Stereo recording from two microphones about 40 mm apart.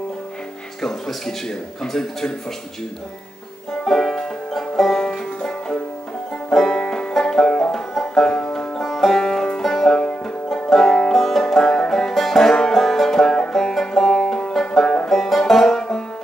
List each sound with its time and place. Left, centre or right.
0.8 s a man's voice: centre
3.8 s music: centre
5.0 s music: left
6.5 s banjo: centre
8.5 s music: centre
12.1 s banjo: centre
14.2 s banjo: centre
15.0 s banjo: centre